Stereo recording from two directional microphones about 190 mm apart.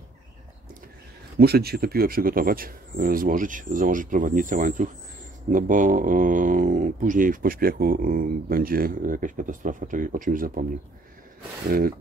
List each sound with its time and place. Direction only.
1.4 s speech: 55° right (ahead or behind)